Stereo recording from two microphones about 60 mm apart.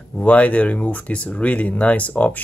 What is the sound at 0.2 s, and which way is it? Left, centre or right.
Speech, left.